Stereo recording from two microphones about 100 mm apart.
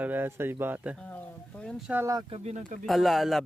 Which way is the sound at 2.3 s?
90° right.